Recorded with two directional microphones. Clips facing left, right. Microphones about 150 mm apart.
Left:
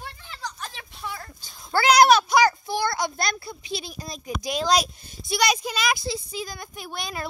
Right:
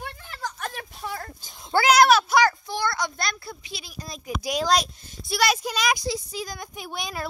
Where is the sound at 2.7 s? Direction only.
10° left (ahead or behind).